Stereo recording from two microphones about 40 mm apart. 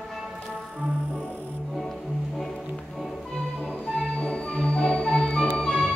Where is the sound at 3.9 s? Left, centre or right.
Left.